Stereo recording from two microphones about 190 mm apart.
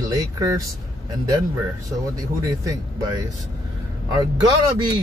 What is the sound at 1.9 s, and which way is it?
Speech, 20° right (ahead or behind).